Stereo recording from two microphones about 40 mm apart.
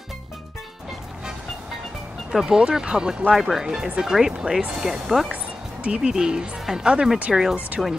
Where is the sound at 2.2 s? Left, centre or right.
Centre.